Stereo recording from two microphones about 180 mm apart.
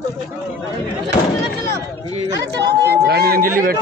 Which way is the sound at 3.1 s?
60° right (ahead or behind).